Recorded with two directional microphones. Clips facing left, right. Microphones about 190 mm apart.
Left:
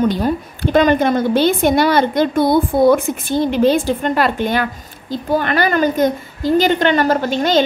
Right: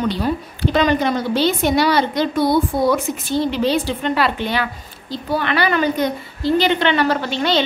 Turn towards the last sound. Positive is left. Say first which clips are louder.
# left 3 dB
turn(degrees=45)  # may be behind; listen again after turning